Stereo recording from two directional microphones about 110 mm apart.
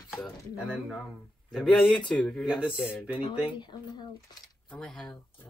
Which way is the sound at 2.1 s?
10° left (ahead or behind).